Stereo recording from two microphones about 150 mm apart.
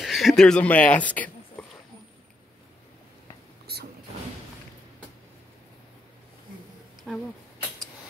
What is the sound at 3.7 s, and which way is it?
Mechanisms, 90° right.